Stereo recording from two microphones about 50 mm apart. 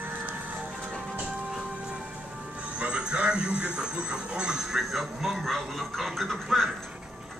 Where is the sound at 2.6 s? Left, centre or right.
Right; by 5.6 s centre.